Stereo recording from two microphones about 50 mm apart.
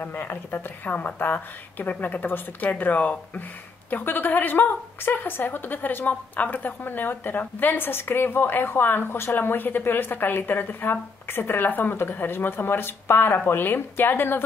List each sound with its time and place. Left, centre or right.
0.0 s a woman's voice: left